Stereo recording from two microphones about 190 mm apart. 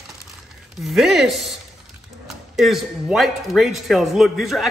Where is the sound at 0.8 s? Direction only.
Centre (ahead or behind).